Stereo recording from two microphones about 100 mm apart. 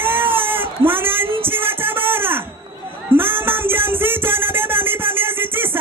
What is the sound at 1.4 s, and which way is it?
Music, 20° right (ahead or behind).